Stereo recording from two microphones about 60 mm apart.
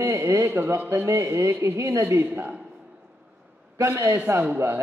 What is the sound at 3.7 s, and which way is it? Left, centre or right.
Speech, right.